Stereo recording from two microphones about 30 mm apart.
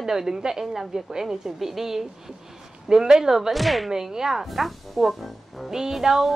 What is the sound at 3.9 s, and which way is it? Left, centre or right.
Speech, centre.